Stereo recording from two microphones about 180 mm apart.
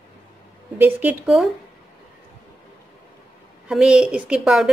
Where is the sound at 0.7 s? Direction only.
10° right (ahead or behind).